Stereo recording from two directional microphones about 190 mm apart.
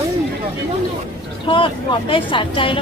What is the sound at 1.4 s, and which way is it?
Speech, 25° left (ahead or behind).